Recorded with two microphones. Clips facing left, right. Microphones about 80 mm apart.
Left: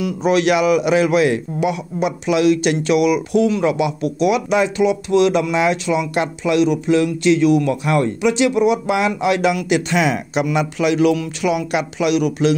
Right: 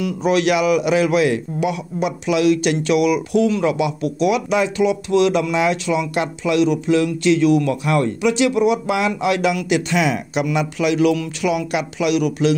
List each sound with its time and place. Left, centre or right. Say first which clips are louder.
0.0 s speech: left 1 dB; left
3.6 s speech: left 1 dB; left